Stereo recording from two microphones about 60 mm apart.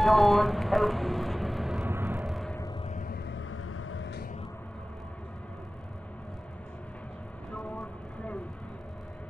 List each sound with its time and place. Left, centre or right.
0.0 s speech: centre
1.9 s vehicle: right
7.5 s a sound: left